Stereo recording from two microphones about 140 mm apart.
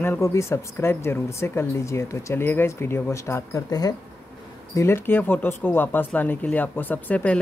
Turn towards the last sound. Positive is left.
turn(degrees=10)  # may be behind; listen again after turning